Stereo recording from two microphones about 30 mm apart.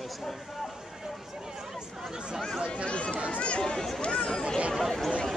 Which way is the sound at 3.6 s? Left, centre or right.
Centre.